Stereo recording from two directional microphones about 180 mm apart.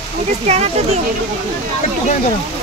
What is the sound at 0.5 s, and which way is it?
Speech, 40° right (ahead or behind).